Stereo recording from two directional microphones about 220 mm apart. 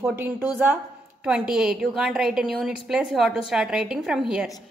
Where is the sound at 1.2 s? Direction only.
5° right (ahead or behind).